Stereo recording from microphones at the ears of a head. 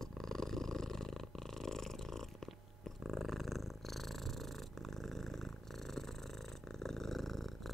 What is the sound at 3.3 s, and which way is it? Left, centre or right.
Purr, centre.